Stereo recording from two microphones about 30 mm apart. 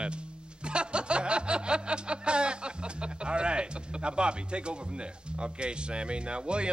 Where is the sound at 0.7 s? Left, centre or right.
Right.